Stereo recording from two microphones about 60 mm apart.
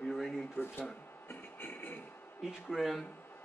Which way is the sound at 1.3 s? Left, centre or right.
Left.